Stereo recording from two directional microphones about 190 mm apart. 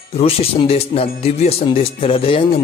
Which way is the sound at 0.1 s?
30° left (ahead or behind).